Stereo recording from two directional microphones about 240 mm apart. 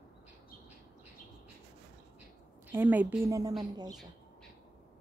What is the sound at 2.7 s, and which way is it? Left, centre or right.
Speech, centre.